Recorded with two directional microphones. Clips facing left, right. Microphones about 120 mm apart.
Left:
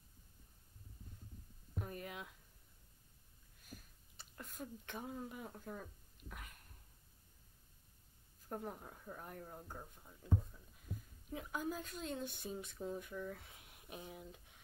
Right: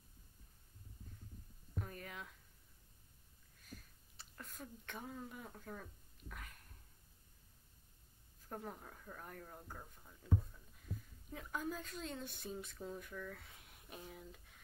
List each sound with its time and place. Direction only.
1.8 s speech: 10° left (ahead or behind)
4.2 s a sound: 5° left (ahead or behind)
4.9 s speech: 10° left (ahead or behind)
8.5 s speech: 10° left (ahead or behind)
13.4 s speech: 5° left (ahead or behind)